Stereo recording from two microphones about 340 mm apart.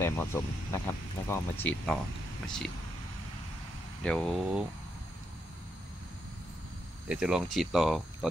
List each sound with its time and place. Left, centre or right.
0.0 s speech: centre
4.0 s speech: centre
7.1 s speech: centre